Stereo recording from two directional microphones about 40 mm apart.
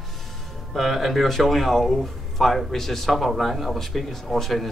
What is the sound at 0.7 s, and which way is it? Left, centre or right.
Speech, centre.